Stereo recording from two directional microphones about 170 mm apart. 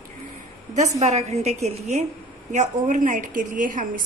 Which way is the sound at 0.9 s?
40° right (ahead or behind).